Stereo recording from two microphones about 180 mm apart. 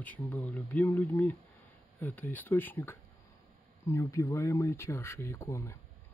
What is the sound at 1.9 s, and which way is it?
Speech, 10° left (ahead or behind).